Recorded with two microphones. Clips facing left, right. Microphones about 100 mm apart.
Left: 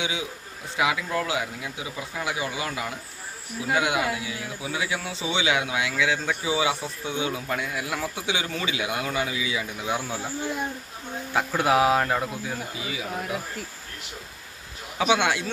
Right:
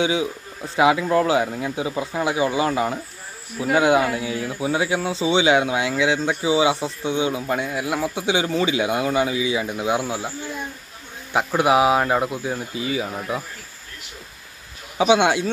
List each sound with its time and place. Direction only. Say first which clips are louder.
0.0 s a man's voice: right 9 dB; 35° right (ahead or behind); by 10.3 s 15° right (ahead or behind)
11.3 s speech: right 4 dB; 10° right (ahead or behind)
12.8 s speech: right 7 dB; 40° right (ahead or behind)
15.0 s a man's voice: right 6 dB; 20° right (ahead or behind)